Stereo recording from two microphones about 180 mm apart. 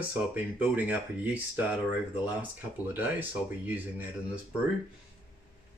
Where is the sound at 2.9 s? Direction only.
10° right (ahead or behind).